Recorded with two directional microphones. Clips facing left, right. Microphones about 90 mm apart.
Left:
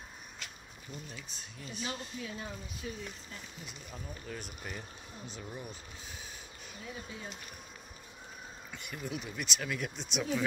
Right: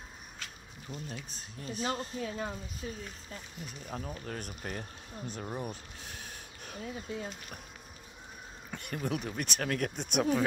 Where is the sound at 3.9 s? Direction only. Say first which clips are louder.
Right 5 dB; 55° right (ahead or behind).